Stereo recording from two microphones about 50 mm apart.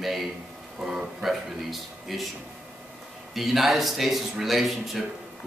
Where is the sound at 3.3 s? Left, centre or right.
Centre.